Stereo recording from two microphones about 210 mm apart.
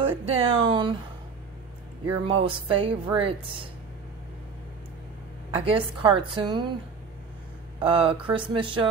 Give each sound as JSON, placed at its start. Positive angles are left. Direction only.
{"t": 0.0, "sound": "a woman's voice", "side_deg": -25}
{"t": 2.2, "sound": "a woman's voice", "side_deg": -25}
{"t": 5.7, "sound": "a woman's voice", "side_deg": -25}
{"t": 7.8, "sound": "a woman's voice", "side_deg": -25}